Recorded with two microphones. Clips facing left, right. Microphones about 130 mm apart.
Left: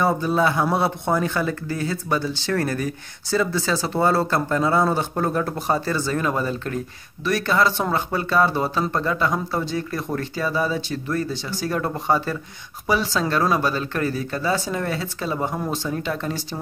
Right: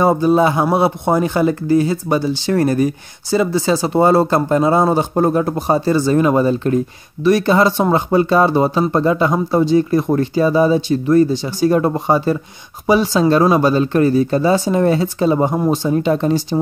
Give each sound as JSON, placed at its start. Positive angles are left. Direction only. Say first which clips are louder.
{"t": 0.2, "sound": "a man's voice", "louder": "right 7 dB", "side_deg": -20}